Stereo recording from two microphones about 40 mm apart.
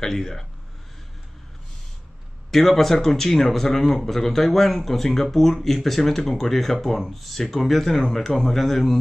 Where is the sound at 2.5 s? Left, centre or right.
Centre.